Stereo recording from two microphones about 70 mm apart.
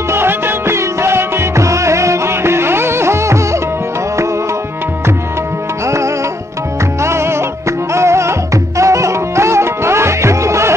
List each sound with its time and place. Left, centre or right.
0.1 s music: right
7.0 s music: right